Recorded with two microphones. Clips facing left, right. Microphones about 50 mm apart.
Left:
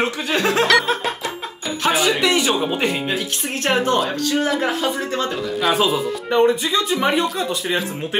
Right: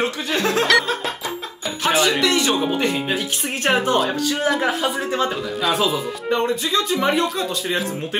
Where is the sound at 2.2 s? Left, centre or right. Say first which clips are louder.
Left 1 dB; centre.